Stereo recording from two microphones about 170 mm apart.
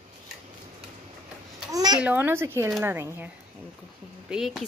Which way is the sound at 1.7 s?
20° right (ahead or behind).